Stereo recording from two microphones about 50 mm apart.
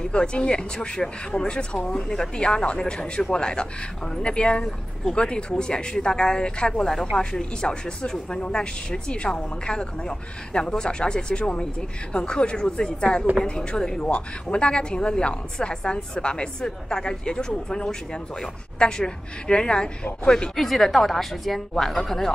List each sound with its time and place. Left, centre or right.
0.0 s a woman's voice: centre
20.5 s speech: centre